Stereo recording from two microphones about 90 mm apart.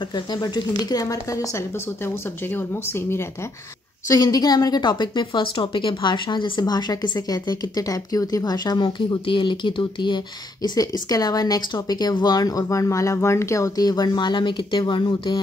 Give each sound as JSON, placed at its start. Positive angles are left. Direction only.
{"t": 0.1, "sound": "a woman's voice", "side_deg": 50}
{"t": 2.5, "sound": "speech", "side_deg": 25}
{"t": 4.1, "sound": "a woman's voice", "side_deg": 45}
{"t": 10.8, "sound": "a woman's voice", "side_deg": 45}